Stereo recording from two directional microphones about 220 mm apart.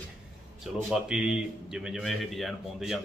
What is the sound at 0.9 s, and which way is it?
A man's voice, 5° right (ahead or behind).